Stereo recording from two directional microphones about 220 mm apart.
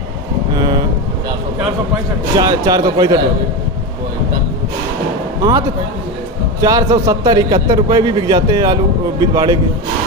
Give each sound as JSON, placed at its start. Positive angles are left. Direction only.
{"t": 0.6, "sound": "vehicle", "side_deg": -20}
{"t": 2.3, "sound": "a man's voice", "side_deg": -15}
{"t": 6.6, "sound": "a man's voice", "side_deg": -15}